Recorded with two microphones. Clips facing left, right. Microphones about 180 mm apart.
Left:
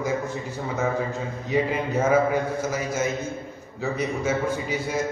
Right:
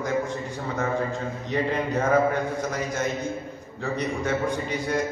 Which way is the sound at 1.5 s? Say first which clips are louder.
Left 2 dB; 5° left (ahead or behind).